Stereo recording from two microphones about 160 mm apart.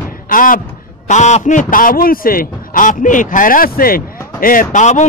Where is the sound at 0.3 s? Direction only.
60° left (ahead or behind).